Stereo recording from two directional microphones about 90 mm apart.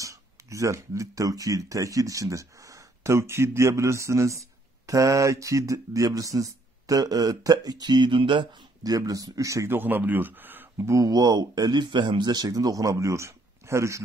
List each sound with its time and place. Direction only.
0.0 s speech: 35° right (ahead or behind); by 8.5 s 70° right (ahead or behind)
8.8 s a man's voice: 45° right (ahead or behind); by 10.7 s 20° right (ahead or behind)
10.8 s speech: 35° right (ahead or behind)